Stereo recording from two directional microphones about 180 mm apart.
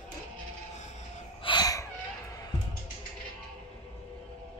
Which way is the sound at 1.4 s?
20° left (ahead or behind).